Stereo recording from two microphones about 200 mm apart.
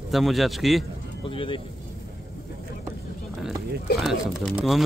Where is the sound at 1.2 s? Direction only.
25° left (ahead or behind).